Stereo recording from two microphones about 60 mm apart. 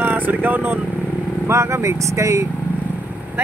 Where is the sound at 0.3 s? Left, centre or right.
Right.